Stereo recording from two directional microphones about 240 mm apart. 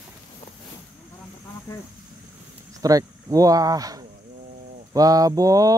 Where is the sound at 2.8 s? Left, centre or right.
Centre.